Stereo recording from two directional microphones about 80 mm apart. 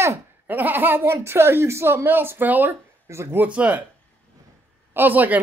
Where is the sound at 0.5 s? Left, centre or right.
Right.